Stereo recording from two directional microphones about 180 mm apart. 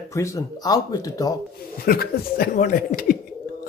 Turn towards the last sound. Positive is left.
turn(degrees=50)  # may be behind; listen again after turning